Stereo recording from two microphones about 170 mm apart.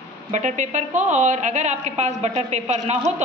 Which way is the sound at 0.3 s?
45° right (ahead or behind).